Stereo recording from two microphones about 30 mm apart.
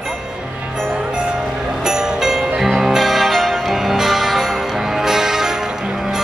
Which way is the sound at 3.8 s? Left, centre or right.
Centre.